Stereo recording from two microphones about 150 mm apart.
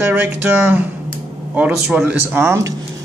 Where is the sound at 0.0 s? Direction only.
15° right (ahead or behind).